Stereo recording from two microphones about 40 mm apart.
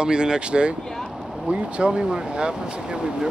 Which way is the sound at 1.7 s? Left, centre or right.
Right.